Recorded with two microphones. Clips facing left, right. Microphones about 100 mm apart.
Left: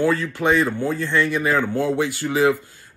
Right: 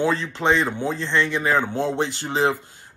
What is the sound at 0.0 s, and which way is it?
Speech, 20° right (ahead or behind).